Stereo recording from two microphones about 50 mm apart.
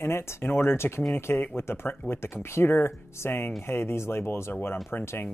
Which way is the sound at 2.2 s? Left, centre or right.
Left.